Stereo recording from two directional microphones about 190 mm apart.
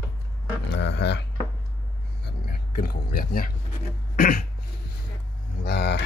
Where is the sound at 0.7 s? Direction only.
65° left (ahead or behind).